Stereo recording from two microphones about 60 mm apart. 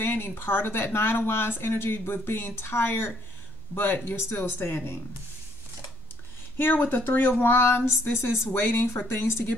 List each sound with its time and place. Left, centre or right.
0.0 s speech: left
6.7 s speech: left
8.6 s speech: left